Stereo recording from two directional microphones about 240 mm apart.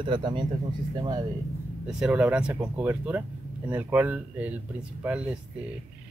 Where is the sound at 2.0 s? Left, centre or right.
Centre.